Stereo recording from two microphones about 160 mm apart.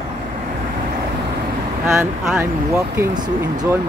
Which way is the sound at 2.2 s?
5° right (ahead or behind).